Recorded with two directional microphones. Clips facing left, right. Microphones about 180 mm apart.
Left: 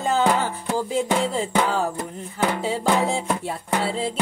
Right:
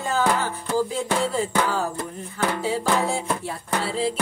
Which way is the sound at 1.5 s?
20° left (ahead or behind).